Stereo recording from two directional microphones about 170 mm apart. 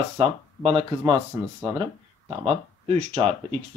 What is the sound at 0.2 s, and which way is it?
Speech, 35° right (ahead or behind).